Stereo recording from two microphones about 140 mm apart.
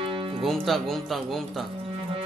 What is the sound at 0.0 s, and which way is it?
Music, 40° right (ahead or behind).